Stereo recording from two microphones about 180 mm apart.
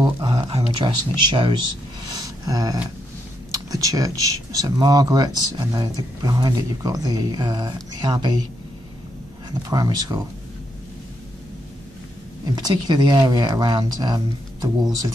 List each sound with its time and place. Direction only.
0.0 s a sound: 25° right (ahead or behind)
2.1 s gasp: 20° right (ahead or behind)
3.5 s speech: 20° right (ahead or behind)
9.5 s speech: 20° right (ahead or behind)
12.5 s speech: 25° right (ahead or behind)